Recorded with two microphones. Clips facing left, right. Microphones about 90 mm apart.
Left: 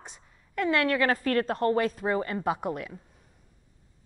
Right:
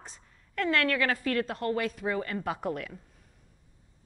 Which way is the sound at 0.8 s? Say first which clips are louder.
Left 3 dB; 30° left (ahead or behind).